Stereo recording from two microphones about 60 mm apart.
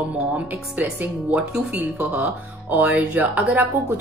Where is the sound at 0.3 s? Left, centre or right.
Right.